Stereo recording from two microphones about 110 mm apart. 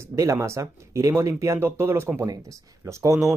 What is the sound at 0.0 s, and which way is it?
Speech, 25° right (ahead or behind).